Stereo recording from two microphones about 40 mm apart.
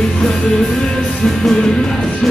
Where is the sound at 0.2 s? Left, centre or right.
Centre.